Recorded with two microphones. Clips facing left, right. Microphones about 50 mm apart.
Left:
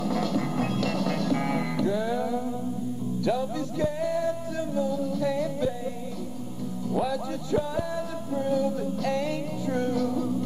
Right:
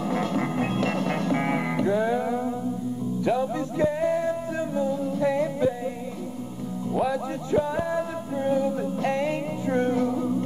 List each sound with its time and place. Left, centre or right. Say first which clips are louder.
0.0 s music: right 1 dB; right
6.9 s music: right 2 dB; right